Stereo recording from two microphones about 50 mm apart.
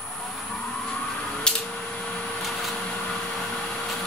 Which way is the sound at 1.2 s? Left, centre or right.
Centre.